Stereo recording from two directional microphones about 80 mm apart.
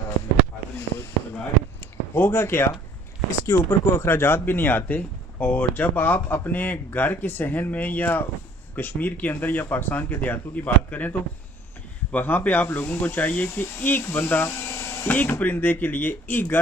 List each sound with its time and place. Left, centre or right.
2.1 s speech: left
15.1 s speech: left